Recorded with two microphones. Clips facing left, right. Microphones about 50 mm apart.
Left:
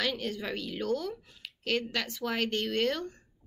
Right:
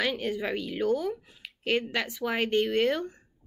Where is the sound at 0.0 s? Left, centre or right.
Centre.